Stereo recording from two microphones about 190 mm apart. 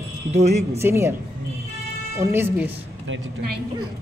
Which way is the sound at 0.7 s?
15° right (ahead or behind).